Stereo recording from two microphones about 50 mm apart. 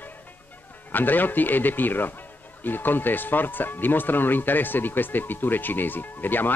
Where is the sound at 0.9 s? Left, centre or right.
Left.